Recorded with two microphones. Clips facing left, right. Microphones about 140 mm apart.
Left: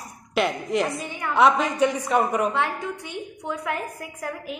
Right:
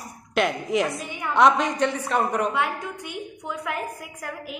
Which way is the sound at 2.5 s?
5° right (ahead or behind).